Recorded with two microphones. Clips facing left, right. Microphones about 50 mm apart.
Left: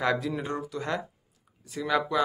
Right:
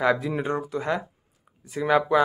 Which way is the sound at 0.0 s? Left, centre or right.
Centre.